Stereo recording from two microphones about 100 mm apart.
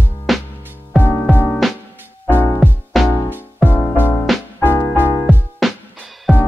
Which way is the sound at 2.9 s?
Centre (ahead or behind).